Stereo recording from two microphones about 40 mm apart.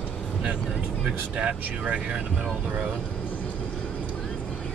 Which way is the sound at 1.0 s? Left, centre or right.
Right.